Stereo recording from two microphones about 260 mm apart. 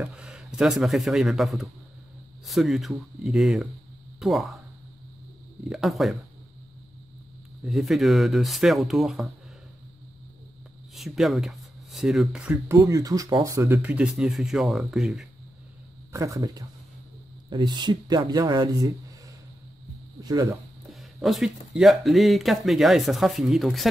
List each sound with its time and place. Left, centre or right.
0.0 s a man's voice: centre
5.7 s speech: centre
7.6 s speech: centre
11.0 s speech: centre
20.2 s speech: centre
20.9 s speech: centre